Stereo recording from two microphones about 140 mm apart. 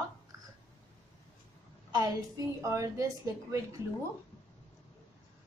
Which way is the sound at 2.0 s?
25° right (ahead or behind).